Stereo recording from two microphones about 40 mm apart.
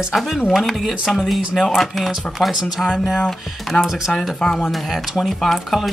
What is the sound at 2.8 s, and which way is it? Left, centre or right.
Speech, left.